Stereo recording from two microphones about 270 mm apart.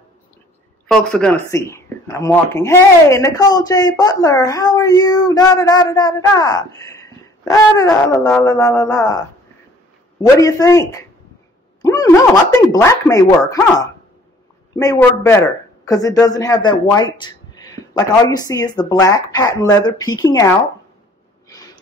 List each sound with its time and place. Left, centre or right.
0.8 s speech: centre
10.2 s speech: centre
11.8 s a sound: centre
12.8 s speech: centre